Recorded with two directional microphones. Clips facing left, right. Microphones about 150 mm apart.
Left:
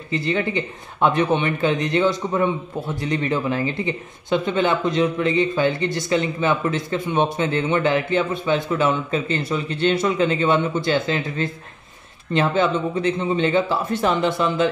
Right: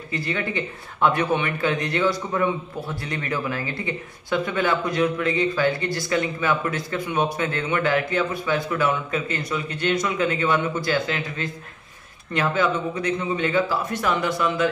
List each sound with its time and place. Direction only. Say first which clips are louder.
0.1 s speech: left 5 dB; 20° left (ahead or behind)